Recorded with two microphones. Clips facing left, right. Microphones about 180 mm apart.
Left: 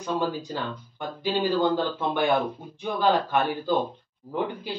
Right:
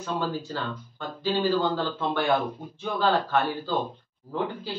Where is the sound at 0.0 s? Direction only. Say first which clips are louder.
Left 2 dB; 15° left (ahead or behind).